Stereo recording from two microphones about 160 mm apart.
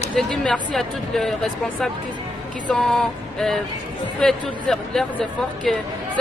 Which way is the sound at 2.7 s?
Centre (ahead or behind).